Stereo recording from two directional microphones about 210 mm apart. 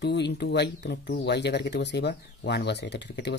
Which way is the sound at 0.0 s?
55° left (ahead or behind).